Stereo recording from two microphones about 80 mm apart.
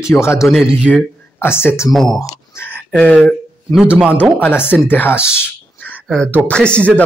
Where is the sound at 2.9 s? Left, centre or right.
Centre.